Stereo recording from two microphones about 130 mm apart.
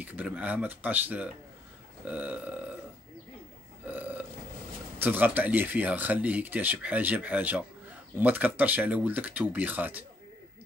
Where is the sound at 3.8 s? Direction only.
15° right (ahead or behind).